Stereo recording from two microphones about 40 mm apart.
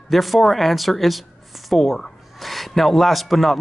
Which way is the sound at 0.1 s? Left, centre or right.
Centre.